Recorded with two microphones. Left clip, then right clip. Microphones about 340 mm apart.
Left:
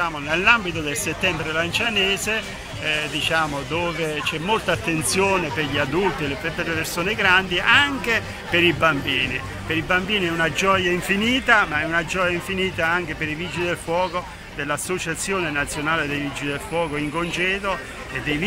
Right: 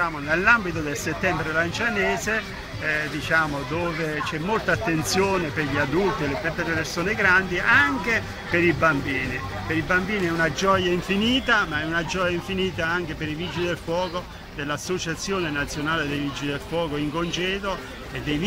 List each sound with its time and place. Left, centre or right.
0.0 s speech: centre
9.7 s speech: centre